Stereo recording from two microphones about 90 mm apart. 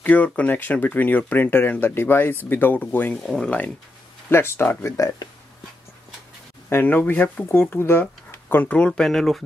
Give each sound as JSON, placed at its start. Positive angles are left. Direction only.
{"t": 0.0, "sound": "speech", "side_deg": 15}
{"t": 4.9, "sound": "speech", "side_deg": 40}
{"t": 6.7, "sound": "speech", "side_deg": 20}